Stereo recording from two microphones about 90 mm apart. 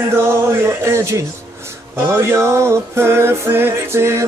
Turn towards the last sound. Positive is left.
turn(degrees=-30)  # may be behind; listen again after turning